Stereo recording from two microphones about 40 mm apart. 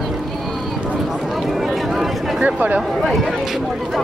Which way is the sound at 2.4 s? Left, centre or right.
Right.